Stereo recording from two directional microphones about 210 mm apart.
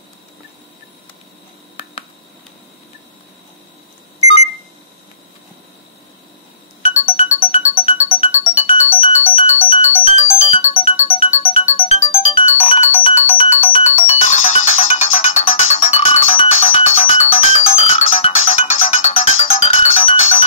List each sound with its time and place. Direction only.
6.8 s music: 30° left (ahead or behind)